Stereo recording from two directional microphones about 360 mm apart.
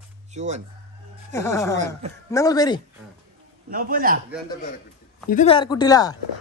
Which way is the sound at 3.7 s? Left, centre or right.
Right.